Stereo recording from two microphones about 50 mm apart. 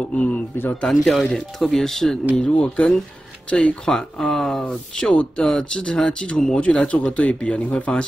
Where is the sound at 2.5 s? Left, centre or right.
Left.